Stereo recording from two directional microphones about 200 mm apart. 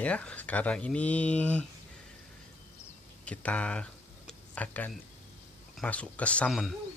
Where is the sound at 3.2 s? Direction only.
5° left (ahead or behind).